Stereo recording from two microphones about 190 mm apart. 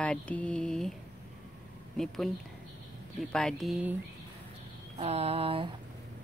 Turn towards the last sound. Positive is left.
turn(degrees=-30)  # may be behind; listen again after turning